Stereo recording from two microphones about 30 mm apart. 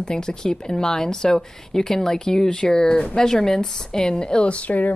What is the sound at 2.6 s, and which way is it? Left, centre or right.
Speech, left.